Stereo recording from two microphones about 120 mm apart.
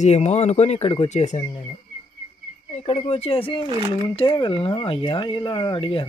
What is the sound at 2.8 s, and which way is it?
Speech, 60° left (ahead or behind).